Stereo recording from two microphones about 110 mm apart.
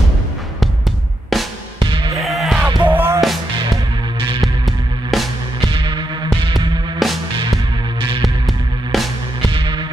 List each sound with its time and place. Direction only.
1.3 s music: centre (ahead or behind)
1.8 s basketball bounce: 45° right (ahead or behind)
2.1 s music: centre (ahead or behind)
2.9 s music: 20° right (ahead or behind)
3.2 s music: centre (ahead or behind)
5.7 s music: 45° right (ahead or behind)
7.0 s music: centre (ahead or behind)
8.2 s music: centre (ahead or behind)
9.5 s music: 45° right (ahead or behind)